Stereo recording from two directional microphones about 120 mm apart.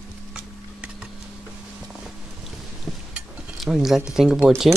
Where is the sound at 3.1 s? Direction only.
5° right (ahead or behind).